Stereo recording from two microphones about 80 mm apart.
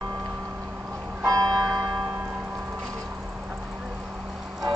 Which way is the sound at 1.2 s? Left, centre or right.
Right.